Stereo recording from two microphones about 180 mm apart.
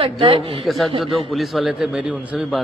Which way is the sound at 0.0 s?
30° right (ahead or behind).